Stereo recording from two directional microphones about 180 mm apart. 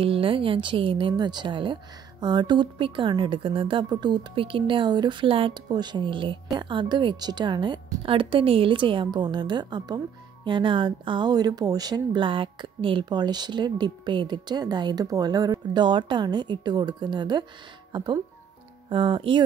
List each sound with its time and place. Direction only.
0.0 s speech: 30° right (ahead or behind)